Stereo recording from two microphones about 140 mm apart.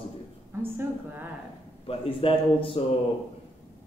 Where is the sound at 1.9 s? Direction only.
40° left (ahead or behind).